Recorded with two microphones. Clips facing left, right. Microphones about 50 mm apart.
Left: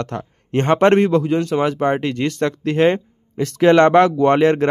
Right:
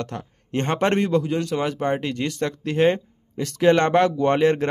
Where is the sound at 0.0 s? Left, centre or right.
Left.